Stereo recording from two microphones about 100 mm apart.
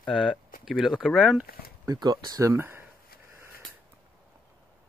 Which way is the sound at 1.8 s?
40° right (ahead or behind).